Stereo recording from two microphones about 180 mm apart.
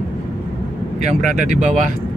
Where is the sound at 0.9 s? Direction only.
40° right (ahead or behind).